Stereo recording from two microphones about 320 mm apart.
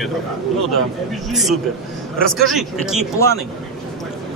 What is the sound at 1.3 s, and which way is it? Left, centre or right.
Speech, centre.